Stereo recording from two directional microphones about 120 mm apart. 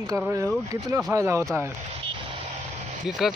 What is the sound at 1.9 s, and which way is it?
Vehicle, 45° right (ahead or behind).